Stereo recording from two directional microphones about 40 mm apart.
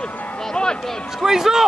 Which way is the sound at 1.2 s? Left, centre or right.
Centre.